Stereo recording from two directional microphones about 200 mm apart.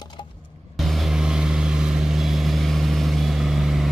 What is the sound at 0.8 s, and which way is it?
Vehicle, centre (ahead or behind).